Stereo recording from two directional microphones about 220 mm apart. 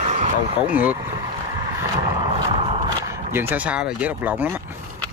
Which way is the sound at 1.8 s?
20° right (ahead or behind).